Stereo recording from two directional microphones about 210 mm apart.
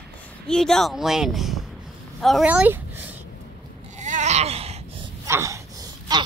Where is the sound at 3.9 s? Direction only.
35° right (ahead or behind).